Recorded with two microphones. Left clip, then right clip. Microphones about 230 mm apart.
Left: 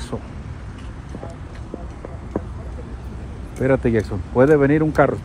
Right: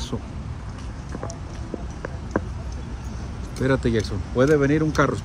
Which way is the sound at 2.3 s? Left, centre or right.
Left.